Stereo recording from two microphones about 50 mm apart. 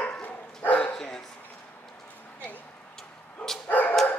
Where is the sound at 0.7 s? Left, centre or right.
Left.